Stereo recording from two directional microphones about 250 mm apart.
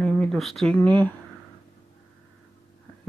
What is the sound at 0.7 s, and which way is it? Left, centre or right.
Speech, centre.